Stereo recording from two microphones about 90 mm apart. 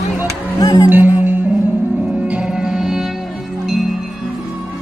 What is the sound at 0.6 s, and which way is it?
Speech, 45° left (ahead or behind).